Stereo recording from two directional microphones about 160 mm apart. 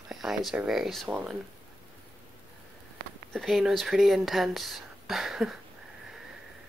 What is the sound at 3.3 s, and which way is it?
Speech, centre (ahead or behind).